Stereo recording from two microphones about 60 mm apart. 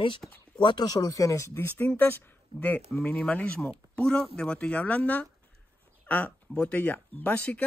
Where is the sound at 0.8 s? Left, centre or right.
Left.